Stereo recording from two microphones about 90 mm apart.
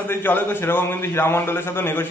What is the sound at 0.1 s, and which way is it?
A man's voice, 25° left (ahead or behind).